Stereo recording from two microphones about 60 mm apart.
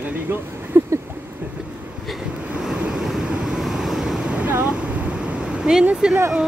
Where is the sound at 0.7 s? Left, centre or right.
Right.